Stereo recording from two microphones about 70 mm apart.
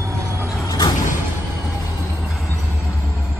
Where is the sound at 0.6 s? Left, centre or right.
Left.